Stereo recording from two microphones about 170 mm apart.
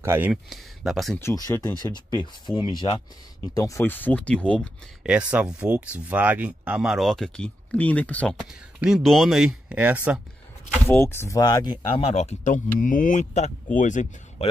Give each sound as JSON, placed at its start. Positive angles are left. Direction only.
{"t": 0.0, "sound": "speech", "side_deg": -15}
{"t": 0.3, "sound": "speech", "side_deg": 0}
{"t": 1.2, "sound": "speech", "side_deg": 15}
{"t": 5.0, "sound": "speech", "side_deg": -5}
{"t": 10.9, "sound": "speech", "side_deg": 15}
{"t": 12.1, "sound": "speech", "side_deg": 40}